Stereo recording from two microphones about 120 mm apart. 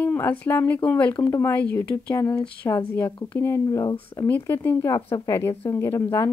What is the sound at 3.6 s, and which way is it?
Speech, 30° left (ahead or behind).